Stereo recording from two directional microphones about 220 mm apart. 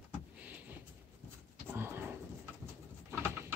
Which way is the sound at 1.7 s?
10° right (ahead or behind).